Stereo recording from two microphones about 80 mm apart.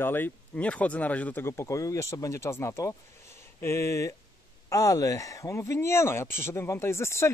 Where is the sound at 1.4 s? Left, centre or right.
Left.